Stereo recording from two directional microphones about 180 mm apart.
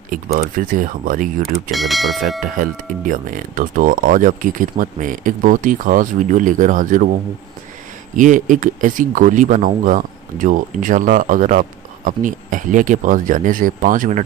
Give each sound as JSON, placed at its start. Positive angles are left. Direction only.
{"t": 0.1, "sound": "speech", "side_deg": -55}
{"t": 1.4, "sound": "speech", "side_deg": 0}
{"t": 2.4, "sound": "speech", "side_deg": -50}
{"t": 8.2, "sound": "speech", "side_deg": -45}